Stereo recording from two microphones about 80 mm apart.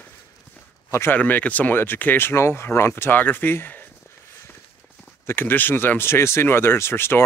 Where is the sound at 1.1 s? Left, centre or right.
Left.